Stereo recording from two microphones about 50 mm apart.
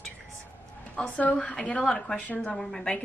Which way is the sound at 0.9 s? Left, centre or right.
Left.